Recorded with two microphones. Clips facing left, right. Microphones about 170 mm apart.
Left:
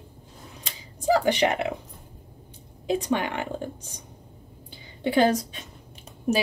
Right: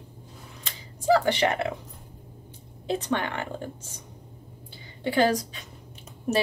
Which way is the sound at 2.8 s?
10° left (ahead or behind).